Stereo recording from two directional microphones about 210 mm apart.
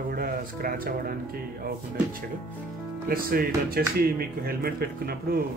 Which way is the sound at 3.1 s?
45° right (ahead or behind).